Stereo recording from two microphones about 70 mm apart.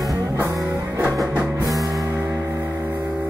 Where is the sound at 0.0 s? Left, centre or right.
Right.